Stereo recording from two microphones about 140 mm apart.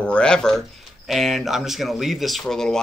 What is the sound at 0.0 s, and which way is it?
Speech, 5° left (ahead or behind).